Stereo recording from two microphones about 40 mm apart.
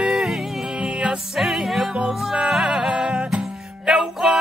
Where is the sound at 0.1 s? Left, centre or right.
Centre.